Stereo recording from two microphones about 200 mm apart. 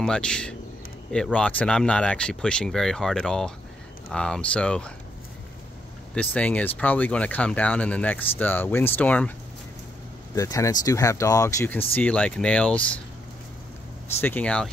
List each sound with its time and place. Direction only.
0.0 s speech: 5° left (ahead or behind)
6.1 s speech: 5° left (ahead or behind)
10.3 s speech: 15° left (ahead or behind)
14.2 s speech: 5° left (ahead or behind)